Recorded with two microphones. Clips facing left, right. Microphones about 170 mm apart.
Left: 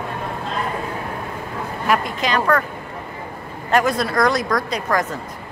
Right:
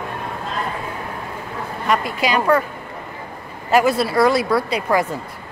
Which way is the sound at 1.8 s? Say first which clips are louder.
Even; 5° left (ahead or behind).